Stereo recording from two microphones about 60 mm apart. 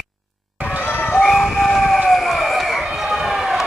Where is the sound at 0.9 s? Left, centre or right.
Left.